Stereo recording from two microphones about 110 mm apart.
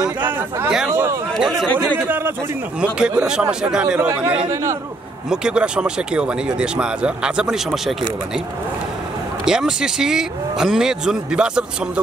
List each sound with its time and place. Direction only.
0.8 s speech: 20° right (ahead or behind)
1.3 s speech: centre (ahead or behind)
2.8 s speech: 10° right (ahead or behind)
5.3 s speech: 10° right (ahead or behind)
9.4 s speech: 5° right (ahead or behind)